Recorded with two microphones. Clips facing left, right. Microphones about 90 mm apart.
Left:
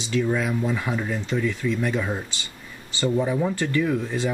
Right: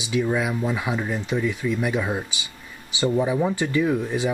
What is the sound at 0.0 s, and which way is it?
Speech, 10° right (ahead or behind).